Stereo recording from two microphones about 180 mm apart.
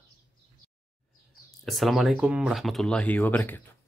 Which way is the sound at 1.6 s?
Centre (ahead or behind).